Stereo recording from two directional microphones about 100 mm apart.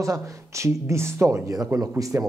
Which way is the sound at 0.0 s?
30° right (ahead or behind).